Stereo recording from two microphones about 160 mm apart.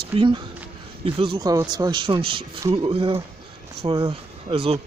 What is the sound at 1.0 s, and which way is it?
Speech, 30° right (ahead or behind).